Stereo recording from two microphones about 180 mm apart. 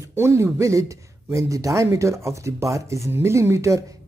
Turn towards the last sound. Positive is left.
turn(degrees=-15)  # may be behind; listen again after turning